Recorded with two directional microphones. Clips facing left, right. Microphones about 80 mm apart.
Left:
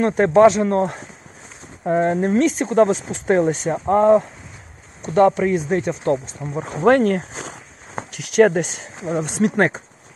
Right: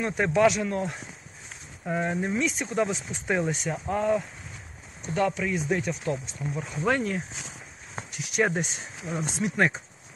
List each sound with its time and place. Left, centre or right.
0.0 s speech: left
6.7 s speech: left
8.1 s speech: left
9.1 s speech: left